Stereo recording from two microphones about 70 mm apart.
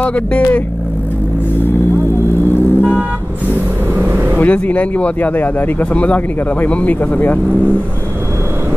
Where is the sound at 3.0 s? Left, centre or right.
Right.